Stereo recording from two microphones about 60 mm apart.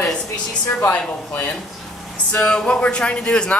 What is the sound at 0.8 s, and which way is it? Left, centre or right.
Speech, left.